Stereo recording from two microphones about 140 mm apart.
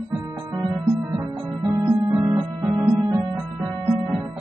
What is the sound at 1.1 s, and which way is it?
Music, 25° right (ahead or behind).